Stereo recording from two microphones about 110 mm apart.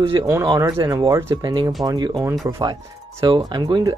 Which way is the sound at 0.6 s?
30° right (ahead or behind).